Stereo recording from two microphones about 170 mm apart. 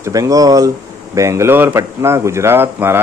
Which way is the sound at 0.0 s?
20° right (ahead or behind).